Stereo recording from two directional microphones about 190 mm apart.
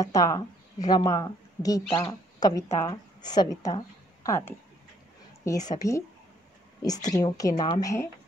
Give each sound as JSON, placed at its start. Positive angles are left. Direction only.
{"t": 0.0, "sound": "a woman's voice", "side_deg": 15}